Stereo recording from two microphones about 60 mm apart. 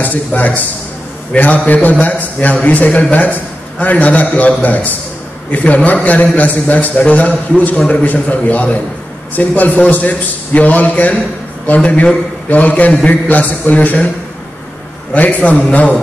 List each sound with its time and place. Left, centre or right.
0.0 s a man's voice: left
15.1 s a man's voice: left